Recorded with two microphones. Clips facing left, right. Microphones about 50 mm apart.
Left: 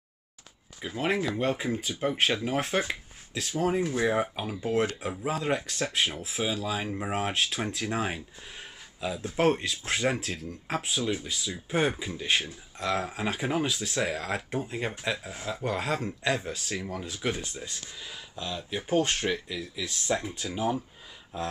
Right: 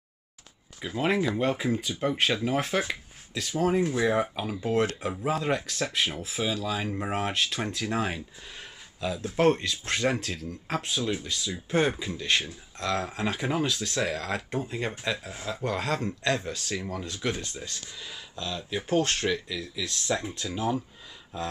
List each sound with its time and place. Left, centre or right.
0.7 s speech: centre